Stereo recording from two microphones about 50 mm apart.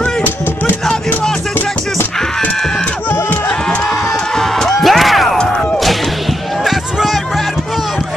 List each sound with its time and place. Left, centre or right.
3.1 s music: left
4.4 s a sound: centre
4.7 s music: centre
6.6 s run: centre